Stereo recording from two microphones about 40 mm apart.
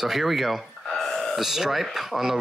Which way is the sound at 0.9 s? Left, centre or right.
Centre.